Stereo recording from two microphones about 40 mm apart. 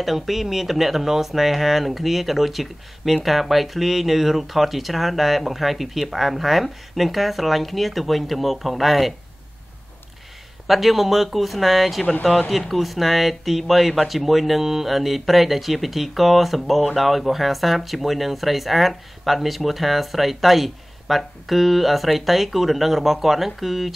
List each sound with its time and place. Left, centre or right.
0.0 s speech: centre
10.7 s speech: centre
12.0 s speech: centre